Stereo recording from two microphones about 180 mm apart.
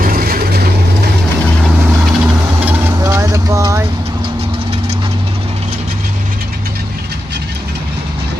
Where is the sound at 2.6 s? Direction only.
15° right (ahead or behind).